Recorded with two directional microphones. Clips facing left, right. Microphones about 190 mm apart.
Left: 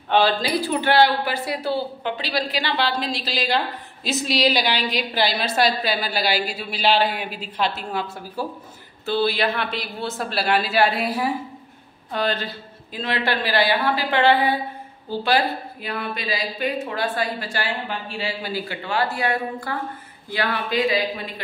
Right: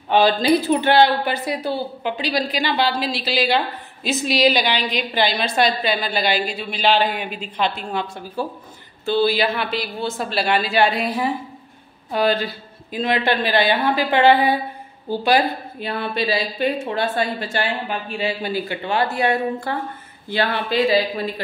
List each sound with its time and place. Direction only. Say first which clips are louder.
0.1 s speech: right 4 dB; 20° right (ahead or behind); by 11.3 s 5° left (ahead or behind)
12.1 s speech: right 5 dB; 10° right (ahead or behind)
15.8 s speech: right 7 dB; 30° right (ahead or behind)